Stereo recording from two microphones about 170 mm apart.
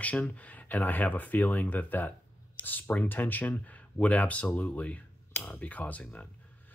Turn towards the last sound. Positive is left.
turn(degrees=10)  # may be behind; listen again after turning